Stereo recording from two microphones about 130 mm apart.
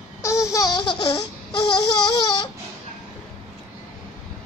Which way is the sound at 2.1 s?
30° left (ahead or behind).